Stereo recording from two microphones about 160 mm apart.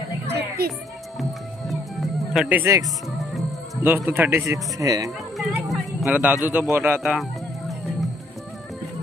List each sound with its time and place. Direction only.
0.3 s music: 85° right
1.2 s music: centre (ahead or behind)
2.6 s speech: 20° right (ahead or behind)
3.2 s music: centre (ahead or behind)
3.8 s speech: 15° right (ahead or behind)
5.7 s speech: centre (ahead or behind)
7.0 s music: centre (ahead or behind)